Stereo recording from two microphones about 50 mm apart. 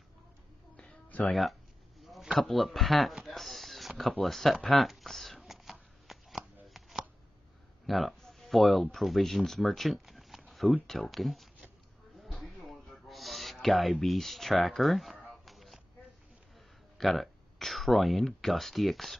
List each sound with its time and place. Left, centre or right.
1.3 s a sound: centre
2.3 s speech: centre
3.3 s a sound: centre
4.2 s speech: centre
4.6 s shuffling cards: centre
7.8 s speech: centre
12.4 s owl: centre
17.0 s speech: centre